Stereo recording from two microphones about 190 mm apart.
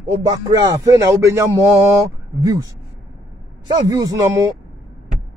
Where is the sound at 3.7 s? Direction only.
20° right (ahead or behind).